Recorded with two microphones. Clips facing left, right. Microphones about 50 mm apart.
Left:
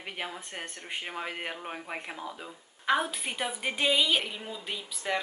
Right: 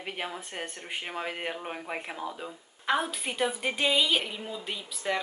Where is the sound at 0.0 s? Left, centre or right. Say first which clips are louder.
Right 2 dB; centre.